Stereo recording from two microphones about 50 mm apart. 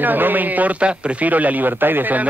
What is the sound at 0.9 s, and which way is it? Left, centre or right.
Speech, right.